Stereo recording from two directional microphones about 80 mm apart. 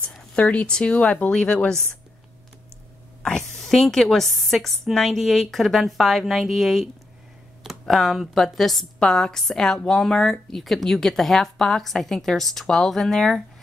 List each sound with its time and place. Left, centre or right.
0.1 s speech: centre
3.2 s speech: centre